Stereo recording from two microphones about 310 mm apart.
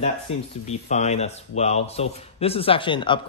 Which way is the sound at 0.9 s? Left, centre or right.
Left.